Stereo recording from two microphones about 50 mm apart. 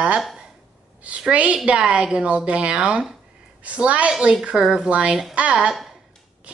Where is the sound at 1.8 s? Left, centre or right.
Centre.